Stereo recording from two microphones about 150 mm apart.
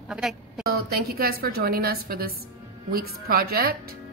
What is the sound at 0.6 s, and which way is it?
A woman's voice, 90° right.